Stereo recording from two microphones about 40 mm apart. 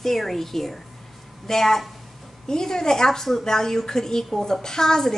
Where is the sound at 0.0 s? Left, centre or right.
Centre.